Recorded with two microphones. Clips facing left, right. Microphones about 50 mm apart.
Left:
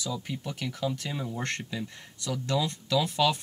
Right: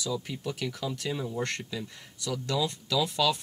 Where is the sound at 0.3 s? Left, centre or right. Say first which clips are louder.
Right 1 dB; centre.